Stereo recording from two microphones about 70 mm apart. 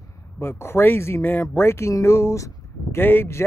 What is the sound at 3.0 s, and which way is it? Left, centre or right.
Speech, left.